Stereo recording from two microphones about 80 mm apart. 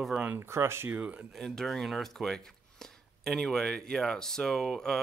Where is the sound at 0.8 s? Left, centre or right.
Centre.